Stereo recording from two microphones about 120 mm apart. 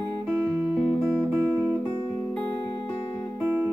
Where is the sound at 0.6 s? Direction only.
10° right (ahead or behind).